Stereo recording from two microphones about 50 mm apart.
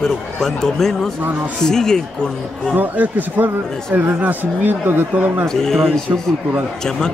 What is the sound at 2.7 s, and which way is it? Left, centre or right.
Speech, right.